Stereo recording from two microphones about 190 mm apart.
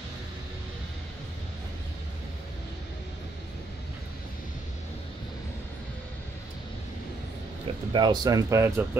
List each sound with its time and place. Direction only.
7.9 s speech: 20° right (ahead or behind)